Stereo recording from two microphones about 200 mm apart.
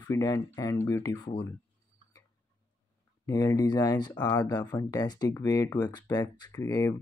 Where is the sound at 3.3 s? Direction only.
15° left (ahead or behind).